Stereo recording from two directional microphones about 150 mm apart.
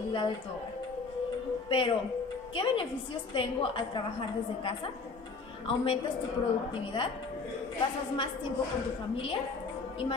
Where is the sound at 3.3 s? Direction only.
35° left (ahead or behind).